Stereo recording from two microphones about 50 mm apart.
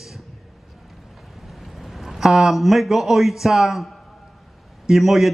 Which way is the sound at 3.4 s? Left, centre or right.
Centre.